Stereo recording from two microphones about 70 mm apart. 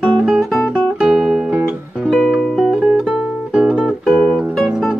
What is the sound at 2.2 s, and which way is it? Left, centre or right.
Music, centre.